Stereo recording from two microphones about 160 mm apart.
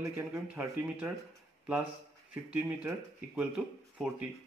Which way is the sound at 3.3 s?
5° right (ahead or behind).